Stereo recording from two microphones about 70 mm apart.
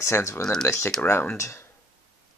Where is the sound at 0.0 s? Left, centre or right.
Left.